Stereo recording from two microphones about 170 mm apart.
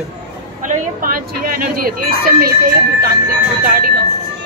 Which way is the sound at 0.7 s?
55° right (ahead or behind).